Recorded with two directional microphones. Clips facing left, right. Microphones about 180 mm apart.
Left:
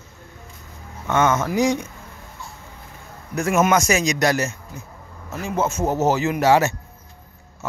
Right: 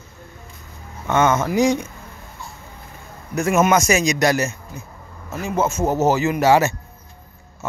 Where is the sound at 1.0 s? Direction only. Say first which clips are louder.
Right 2 dB; 20° right (ahead or behind).